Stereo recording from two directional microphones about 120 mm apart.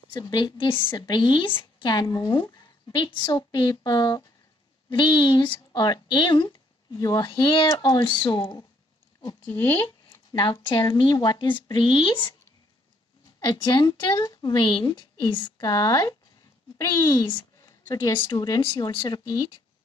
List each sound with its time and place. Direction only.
0.1 s a woman's voice: 40° left (ahead or behind)
10.3 s a woman's voice: 40° left (ahead or behind)
13.4 s a woman's voice: 35° left (ahead or behind)
17.6 s a sound: 25° left (ahead or behind)
18.1 s a woman's voice: 40° left (ahead or behind)